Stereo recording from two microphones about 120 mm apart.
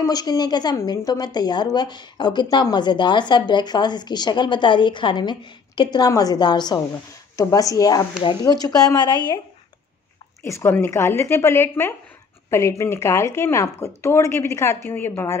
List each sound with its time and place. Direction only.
0.0 s a woman's voice: 35° left (ahead or behind)
10.4 s speech: 20° left (ahead or behind)